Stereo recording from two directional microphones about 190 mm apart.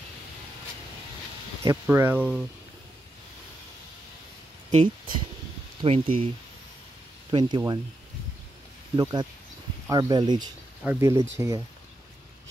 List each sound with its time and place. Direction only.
1.6 s speech: 15° right (ahead or behind)
4.6 s speech: 25° right (ahead or behind)
7.2 s speech: 25° right (ahead or behind)
8.9 s speech: 20° right (ahead or behind)